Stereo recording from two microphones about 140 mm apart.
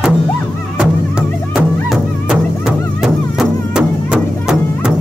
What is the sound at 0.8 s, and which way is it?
Music, 5° right (ahead or behind).